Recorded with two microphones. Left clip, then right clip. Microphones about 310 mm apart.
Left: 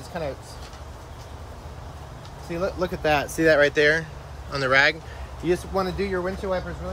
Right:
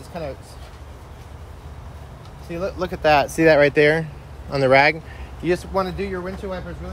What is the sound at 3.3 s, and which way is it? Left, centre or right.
Speech, centre.